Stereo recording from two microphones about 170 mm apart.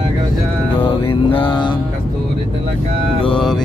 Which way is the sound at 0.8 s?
30° left (ahead or behind).